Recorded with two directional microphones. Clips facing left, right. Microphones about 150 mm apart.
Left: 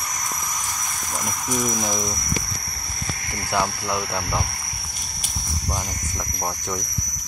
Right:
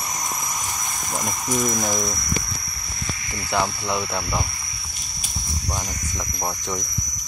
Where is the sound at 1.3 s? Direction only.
5° right (ahead or behind).